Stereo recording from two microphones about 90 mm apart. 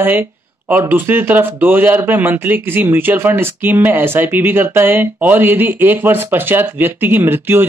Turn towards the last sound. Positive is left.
turn(degrees=-25)  # may be behind; listen again after turning